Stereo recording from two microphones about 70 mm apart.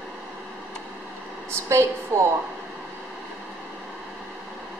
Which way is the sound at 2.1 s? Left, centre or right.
Right.